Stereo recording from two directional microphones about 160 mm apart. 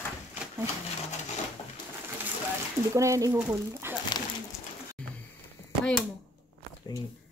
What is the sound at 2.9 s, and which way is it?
Speech, 20° right (ahead or behind).